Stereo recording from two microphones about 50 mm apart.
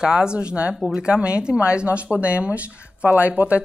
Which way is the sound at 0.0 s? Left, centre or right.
Centre.